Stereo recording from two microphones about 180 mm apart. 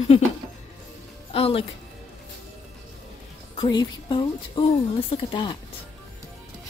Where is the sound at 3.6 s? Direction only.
25° left (ahead or behind).